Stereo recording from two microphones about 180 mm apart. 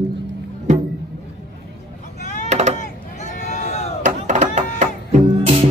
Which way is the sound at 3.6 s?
40° left (ahead or behind).